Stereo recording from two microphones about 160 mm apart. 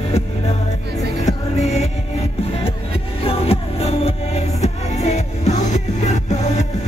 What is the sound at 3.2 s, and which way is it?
Music, 40° left (ahead or behind).